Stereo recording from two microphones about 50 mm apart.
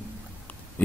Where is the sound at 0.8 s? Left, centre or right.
Left.